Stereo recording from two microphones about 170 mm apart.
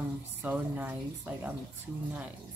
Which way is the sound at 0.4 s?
10° right (ahead or behind).